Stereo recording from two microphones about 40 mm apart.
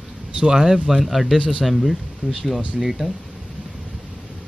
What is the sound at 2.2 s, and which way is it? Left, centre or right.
Speech, right.